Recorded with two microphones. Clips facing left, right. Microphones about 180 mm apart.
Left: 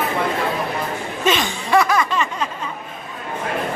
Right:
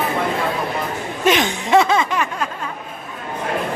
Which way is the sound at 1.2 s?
20° right (ahead or behind).